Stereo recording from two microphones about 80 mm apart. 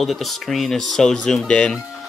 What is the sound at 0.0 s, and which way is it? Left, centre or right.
Speech, centre.